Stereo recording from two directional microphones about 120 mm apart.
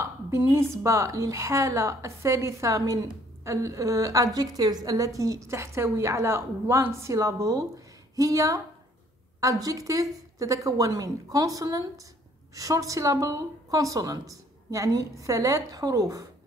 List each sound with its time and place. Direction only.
0.0 s a woman's voice: 25° right (ahead or behind)